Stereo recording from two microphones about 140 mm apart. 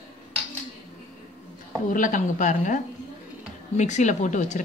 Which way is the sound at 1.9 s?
70° left (ahead or behind).